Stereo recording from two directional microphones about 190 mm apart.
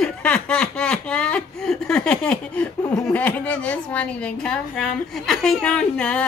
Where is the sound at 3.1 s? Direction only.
10° left (ahead or behind).